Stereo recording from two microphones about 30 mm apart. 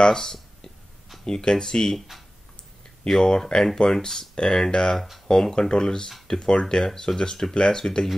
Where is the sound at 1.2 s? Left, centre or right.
Left.